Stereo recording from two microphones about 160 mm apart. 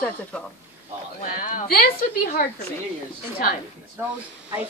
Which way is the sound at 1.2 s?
55° left (ahead or behind).